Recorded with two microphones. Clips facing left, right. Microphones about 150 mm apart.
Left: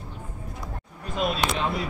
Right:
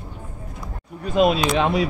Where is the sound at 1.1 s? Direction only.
90° right.